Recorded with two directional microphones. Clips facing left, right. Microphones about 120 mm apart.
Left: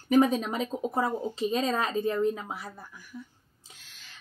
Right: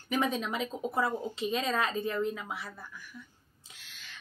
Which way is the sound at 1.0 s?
20° left (ahead or behind).